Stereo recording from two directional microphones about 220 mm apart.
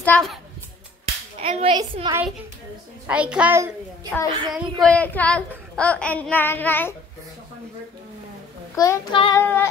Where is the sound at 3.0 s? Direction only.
5° right (ahead or behind).